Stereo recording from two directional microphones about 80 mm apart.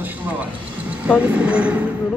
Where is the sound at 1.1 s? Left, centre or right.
Centre.